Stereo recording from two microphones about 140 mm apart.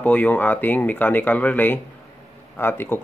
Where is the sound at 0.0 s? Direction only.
10° left (ahead or behind).